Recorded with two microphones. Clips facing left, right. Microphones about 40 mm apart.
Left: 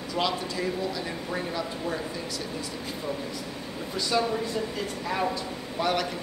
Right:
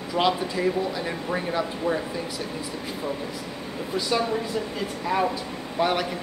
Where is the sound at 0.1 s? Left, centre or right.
Centre.